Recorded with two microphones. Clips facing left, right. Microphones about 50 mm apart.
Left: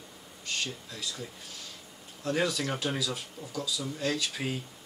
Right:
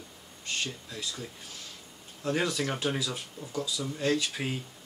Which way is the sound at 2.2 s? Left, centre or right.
Centre.